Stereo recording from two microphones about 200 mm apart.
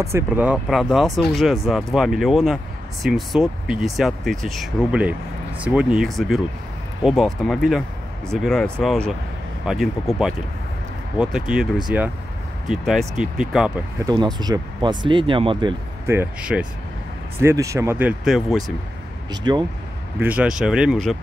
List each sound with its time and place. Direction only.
0.0 s speech: 10° right (ahead or behind)
14.0 s speech: 20° right (ahead or behind)
16.1 s speech: 10° right (ahead or behind)
19.4 s speech: 20° right (ahead or behind)
20.2 s speech: 5° right (ahead or behind)